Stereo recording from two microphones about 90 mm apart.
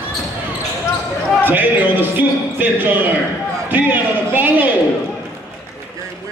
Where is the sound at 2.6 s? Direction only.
20° right (ahead or behind).